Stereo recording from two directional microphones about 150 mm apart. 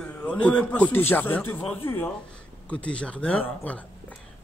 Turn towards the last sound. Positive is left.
turn(degrees=10)  # may be behind; listen again after turning